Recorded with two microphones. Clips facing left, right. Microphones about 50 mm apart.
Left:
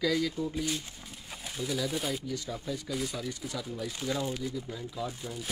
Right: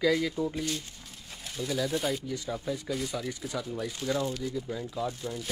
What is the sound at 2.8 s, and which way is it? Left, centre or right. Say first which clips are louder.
Speech: right 2 dB; centre.